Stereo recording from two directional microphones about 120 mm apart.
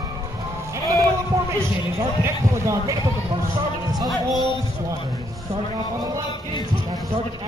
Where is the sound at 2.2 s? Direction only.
25° right (ahead or behind).